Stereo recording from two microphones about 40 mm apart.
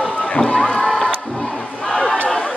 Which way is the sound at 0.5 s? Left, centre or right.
Left.